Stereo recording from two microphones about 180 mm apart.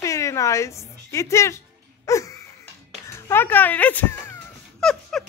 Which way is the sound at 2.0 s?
15° left (ahead or behind).